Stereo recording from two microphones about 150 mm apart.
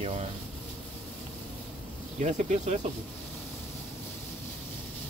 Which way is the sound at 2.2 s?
50° right (ahead or behind).